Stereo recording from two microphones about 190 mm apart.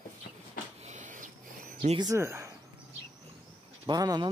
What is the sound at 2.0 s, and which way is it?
Speech, 15° right (ahead or behind).